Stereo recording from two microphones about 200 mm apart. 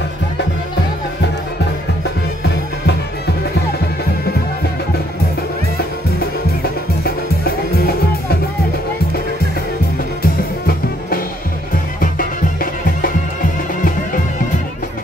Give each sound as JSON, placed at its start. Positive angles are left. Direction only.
{"t": 10.2, "sound": "music", "side_deg": 45}